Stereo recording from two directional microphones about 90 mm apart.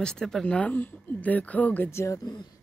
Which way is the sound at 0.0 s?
5° left (ahead or behind).